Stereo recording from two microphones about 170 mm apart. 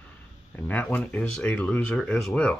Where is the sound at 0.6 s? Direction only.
10° left (ahead or behind).